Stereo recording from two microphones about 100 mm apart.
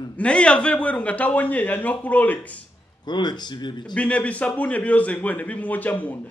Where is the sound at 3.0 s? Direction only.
50° left (ahead or behind).